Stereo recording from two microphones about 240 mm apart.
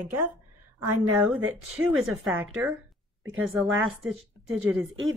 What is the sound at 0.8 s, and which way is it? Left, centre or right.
Speech, right.